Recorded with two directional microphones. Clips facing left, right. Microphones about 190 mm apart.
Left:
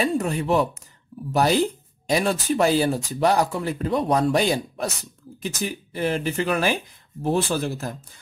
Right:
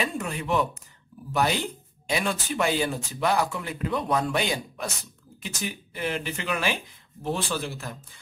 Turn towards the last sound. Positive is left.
turn(degrees=40)  # may be behind; listen again after turning